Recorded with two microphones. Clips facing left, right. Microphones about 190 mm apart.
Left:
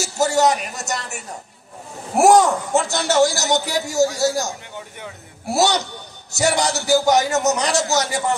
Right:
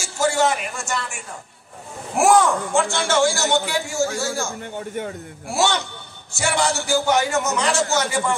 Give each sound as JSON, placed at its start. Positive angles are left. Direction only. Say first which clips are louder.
{"t": 0.0, "sound": "a man's voice", "louder": "left 2 dB", "side_deg": 40}
{"t": 4.7, "sound": "speech", "louder": "right 7 dB", "side_deg": -50}
{"t": 5.5, "sound": "a man's voice", "louder": "left 3 dB", "side_deg": 40}